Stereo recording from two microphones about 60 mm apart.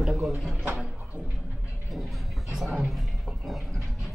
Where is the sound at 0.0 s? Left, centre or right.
Centre.